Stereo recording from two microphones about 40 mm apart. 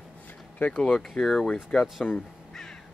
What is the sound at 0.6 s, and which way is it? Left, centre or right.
Speech, left.